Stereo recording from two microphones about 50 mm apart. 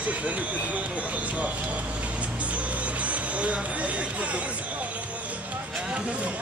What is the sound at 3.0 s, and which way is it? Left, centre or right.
Speech, right.